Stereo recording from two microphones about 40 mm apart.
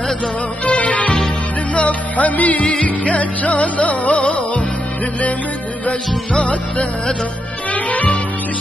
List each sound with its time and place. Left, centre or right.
0.7 s music: left
5.9 s music: left